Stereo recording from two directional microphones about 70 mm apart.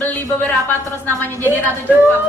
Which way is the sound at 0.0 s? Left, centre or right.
Left.